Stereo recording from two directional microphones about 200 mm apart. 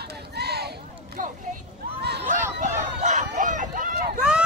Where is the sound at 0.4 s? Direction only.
55° right (ahead or behind).